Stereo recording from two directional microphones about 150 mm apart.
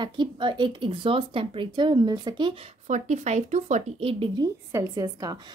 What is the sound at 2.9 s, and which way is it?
Speech, 50° right (ahead or behind).